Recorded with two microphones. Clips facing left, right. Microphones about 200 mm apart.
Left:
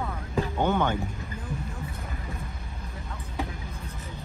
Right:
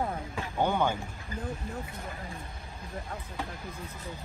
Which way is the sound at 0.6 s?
10° right (ahead or behind).